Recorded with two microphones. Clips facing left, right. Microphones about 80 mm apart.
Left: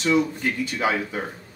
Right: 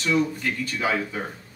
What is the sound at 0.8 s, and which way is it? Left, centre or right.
Speech, left.